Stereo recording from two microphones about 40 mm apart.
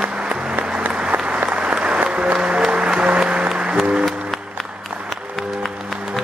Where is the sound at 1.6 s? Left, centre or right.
Right.